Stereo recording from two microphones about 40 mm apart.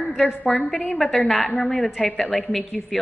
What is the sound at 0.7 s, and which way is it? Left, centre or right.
A woman's voice, centre.